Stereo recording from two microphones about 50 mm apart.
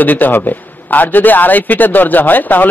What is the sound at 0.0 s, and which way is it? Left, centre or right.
A man's voice, left.